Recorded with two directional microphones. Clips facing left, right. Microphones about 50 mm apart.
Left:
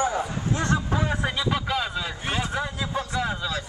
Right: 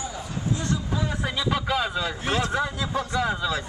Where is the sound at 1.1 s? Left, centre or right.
Centre.